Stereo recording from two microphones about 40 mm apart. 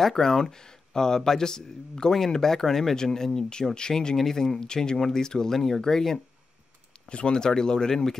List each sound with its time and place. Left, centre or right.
0.0 s speech: centre
7.1 s speech: left